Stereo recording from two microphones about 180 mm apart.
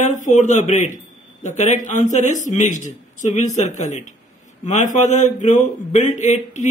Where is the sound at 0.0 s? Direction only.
45° left (ahead or behind).